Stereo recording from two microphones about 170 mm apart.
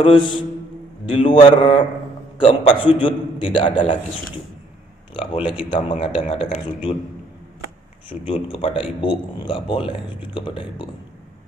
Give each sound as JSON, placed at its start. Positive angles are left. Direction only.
{"t": 0.0, "sound": "a man's voice", "side_deg": 30}
{"t": 5.1, "sound": "a man's voice", "side_deg": 35}
{"t": 8.1, "sound": "a man's voice", "side_deg": 35}